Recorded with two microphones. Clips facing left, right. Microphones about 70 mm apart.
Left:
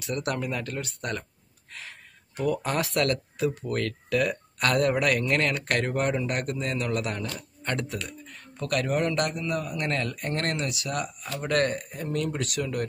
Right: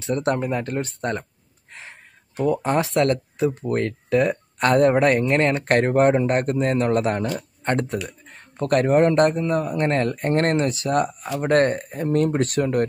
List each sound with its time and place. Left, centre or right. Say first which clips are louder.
0.0 s a man's voice: right 7 dB; right